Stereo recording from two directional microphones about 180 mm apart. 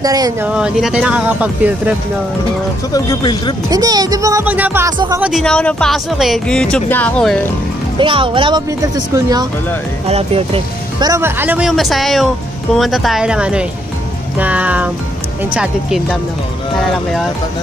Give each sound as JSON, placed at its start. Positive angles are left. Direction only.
{"t": 0.0, "sound": "speech", "side_deg": -20}
{"t": 0.5, "sound": "speech", "side_deg": -5}
{"t": 2.9, "sound": "speech", "side_deg": 20}
{"t": 3.7, "sound": "speech", "side_deg": -20}
{"t": 4.8, "sound": "speech", "side_deg": -20}
{"t": 5.2, "sound": "speech", "side_deg": 0}
{"t": 8.0, "sound": "speech", "side_deg": -30}
{"t": 10.0, "sound": "speech", "side_deg": -35}
{"t": 11.1, "sound": "speech", "side_deg": -15}